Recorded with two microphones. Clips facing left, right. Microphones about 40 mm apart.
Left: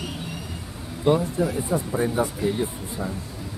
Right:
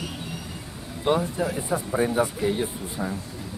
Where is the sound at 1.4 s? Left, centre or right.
Centre.